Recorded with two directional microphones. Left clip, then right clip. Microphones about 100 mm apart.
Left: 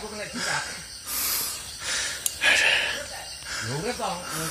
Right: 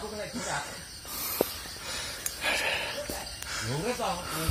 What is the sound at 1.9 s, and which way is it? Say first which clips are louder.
Gasp: left 8 dB; 5° right (ahead or behind).